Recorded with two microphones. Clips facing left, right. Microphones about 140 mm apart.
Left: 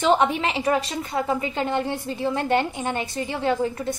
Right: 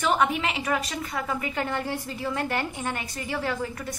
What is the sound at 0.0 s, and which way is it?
A woman's voice, 30° left (ahead or behind).